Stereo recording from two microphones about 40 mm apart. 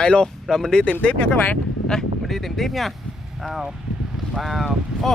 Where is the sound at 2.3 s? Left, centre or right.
Centre.